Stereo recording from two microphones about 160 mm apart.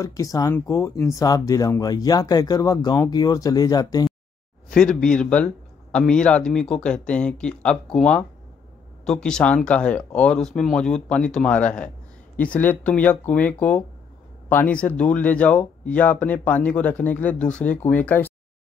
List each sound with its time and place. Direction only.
0.0 s speech: 20° left (ahead or behind)
4.6 s a man's voice: 5° left (ahead or behind)